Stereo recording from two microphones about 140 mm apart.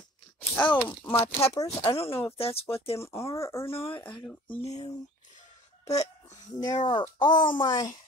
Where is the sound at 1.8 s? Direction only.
45° left (ahead or behind).